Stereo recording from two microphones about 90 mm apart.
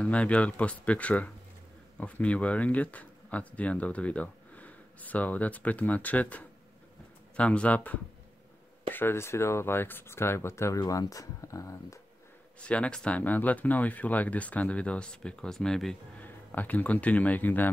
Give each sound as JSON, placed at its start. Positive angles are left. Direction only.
{"t": 0.0, "sound": "speech", "side_deg": 15}
{"t": 8.9, "sound": "speech", "side_deg": 25}
{"t": 12.5, "sound": "speech", "side_deg": 15}
{"t": 16.2, "sound": "speech", "side_deg": 20}